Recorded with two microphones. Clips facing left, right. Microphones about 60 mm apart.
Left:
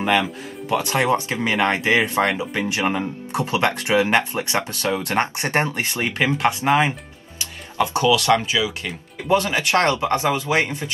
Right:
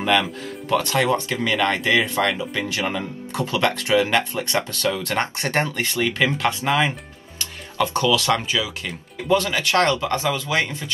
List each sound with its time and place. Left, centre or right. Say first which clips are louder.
0.0 s speech: even; left